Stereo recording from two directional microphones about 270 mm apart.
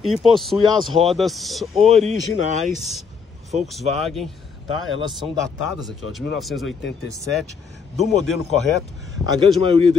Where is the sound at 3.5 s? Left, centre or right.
Centre.